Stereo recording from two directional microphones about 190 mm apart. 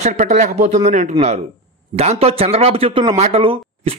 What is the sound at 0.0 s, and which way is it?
Speech, 40° right (ahead or behind).